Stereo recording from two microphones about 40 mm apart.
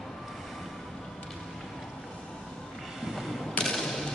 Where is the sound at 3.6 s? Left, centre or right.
Centre.